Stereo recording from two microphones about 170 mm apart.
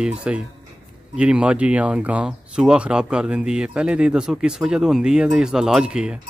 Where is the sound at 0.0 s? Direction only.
5° right (ahead or behind).